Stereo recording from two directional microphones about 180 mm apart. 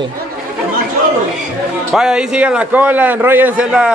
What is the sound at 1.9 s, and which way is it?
A man's voice, 5° right (ahead or behind).